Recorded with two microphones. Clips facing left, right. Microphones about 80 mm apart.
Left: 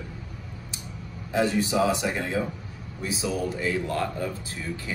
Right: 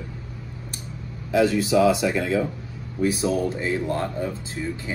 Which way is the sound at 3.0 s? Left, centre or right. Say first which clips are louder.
Right 8 dB; right.